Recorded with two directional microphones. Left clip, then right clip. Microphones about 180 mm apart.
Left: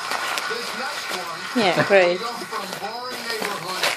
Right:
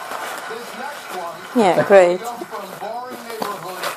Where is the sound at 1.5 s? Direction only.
20° right (ahead or behind).